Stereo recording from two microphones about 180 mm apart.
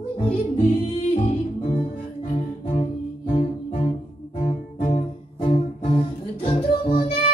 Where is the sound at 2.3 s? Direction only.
35° left (ahead or behind).